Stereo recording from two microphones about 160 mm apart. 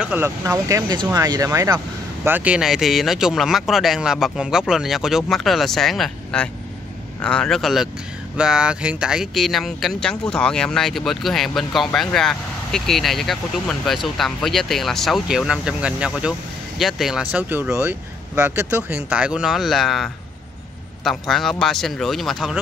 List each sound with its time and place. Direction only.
0.0 s speech: 15° right (ahead or behind)